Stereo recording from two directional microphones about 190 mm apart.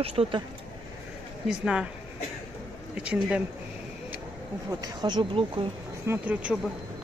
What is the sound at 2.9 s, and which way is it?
Speech, 5° right (ahead or behind).